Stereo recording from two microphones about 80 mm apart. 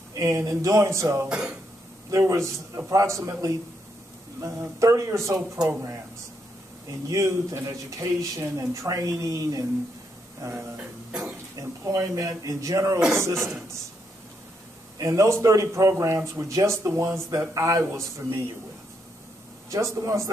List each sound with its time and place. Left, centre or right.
0.1 s a sound: right
0.5 s a man's voice: right
1.3 s speech: centre
2.0 s a man's voice: right
7.1 s a man's voice: right
11.8 s a man's voice: right
15.0 s a man's voice: right
19.7 s a man's voice: right